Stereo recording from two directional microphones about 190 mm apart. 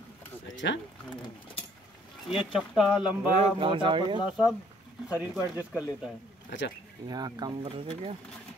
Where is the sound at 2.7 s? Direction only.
Centre (ahead or behind).